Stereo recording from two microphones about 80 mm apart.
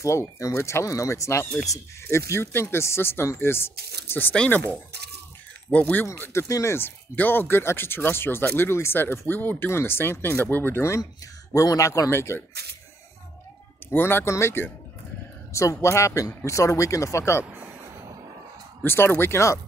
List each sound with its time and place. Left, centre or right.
0.0 s speech: left; by 6.0 s centre
6.4 s speech: left
7.2 s speech: left
11.5 s a man's voice: left
12.1 s speech: left
13.8 s speech: left
18.9 s speech: left